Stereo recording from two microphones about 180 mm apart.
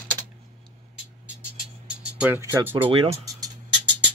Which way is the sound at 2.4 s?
10° right (ahead or behind).